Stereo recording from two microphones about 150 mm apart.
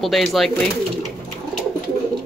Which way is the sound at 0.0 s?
Centre (ahead or behind).